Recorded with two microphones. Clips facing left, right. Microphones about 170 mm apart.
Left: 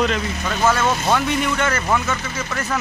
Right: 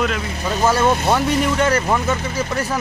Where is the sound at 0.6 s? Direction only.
30° right (ahead or behind).